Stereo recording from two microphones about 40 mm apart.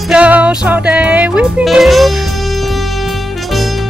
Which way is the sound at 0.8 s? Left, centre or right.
Right.